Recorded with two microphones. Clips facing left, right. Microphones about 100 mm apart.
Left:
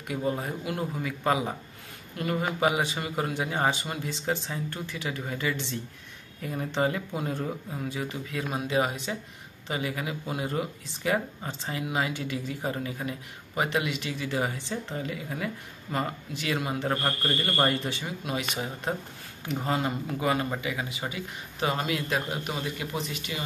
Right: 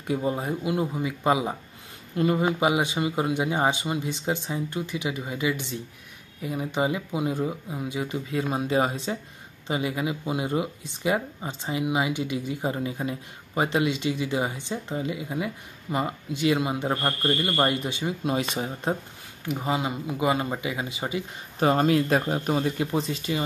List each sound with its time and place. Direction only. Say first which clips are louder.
0.1 s speech: right 3 dB; 20° right (ahead or behind)
8.3 s speech: right 5 dB; 30° right (ahead or behind)
18.2 s speech: right 4 dB; 30° right (ahead or behind)
19.4 s speech: right 1 dB; 10° right (ahead or behind)
21.5 s speech: right 8 dB; 40° right (ahead or behind)